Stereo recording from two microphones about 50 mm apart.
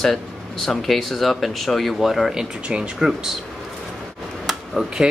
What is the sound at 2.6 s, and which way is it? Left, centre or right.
Speech, centre.